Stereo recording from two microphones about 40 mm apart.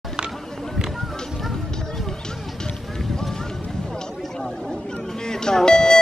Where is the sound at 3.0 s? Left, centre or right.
Centre.